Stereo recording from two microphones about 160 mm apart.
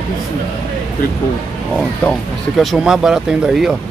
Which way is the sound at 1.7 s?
Centre (ahead or behind).